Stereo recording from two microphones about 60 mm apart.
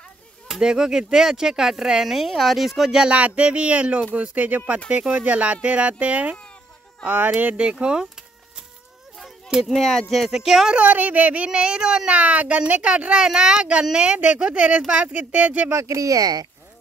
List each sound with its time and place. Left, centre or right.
0.5 s speech: centre
3.1 s speech: right
7.3 s speech: right
9.7 s speech: centre
10.8 s speech: right
11.4 s speech: centre
15.7 s speech: right